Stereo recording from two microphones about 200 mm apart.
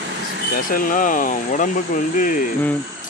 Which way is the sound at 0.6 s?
45° left (ahead or behind).